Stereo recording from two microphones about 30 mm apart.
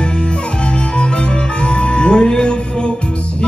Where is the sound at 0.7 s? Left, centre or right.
Left.